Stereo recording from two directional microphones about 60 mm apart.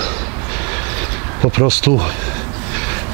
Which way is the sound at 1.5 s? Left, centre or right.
Centre.